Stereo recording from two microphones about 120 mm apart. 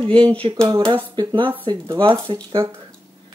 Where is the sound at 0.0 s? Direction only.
45° right (ahead or behind).